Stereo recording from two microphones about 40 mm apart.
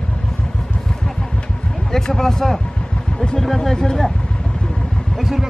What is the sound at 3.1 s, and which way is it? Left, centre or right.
Vehicle, left.